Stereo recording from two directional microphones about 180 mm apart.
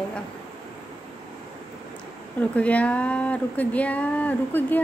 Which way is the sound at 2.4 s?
10° left (ahead or behind).